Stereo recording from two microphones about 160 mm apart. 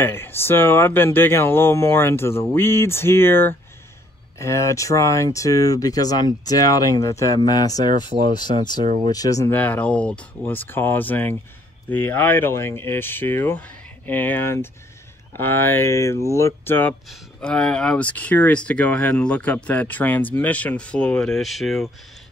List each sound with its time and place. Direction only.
0.0 s speech: 15° left (ahead or behind)
9.6 s speech: 10° left (ahead or behind)